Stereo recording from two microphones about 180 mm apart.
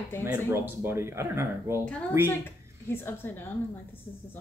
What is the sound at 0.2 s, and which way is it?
Speech, 10° right (ahead or behind).